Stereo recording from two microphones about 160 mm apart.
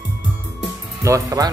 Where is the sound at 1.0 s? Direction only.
20° right (ahead or behind).